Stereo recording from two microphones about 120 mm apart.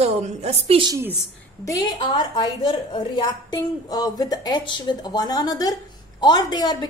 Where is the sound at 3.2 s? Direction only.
30° left (ahead or behind).